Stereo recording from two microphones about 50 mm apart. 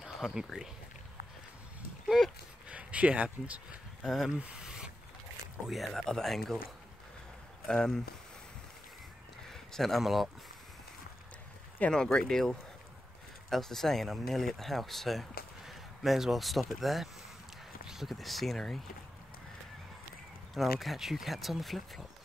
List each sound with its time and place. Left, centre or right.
0.2 s speech: centre
2.1 s speech: centre
2.7 s speech: right
4.0 s speech: centre
4.4 s a sound: right
5.9 s speech: centre
7.6 s speech: centre
9.5 s speech: centre
11.9 s speech: centre
20.5 s speech: centre